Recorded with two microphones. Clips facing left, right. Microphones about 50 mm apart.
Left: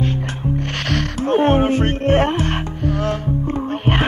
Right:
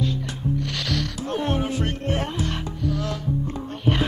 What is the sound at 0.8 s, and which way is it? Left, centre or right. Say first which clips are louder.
Music: left 7 dB; left.